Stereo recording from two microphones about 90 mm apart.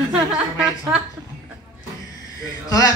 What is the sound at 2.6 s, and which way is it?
Speech, 45° left (ahead or behind).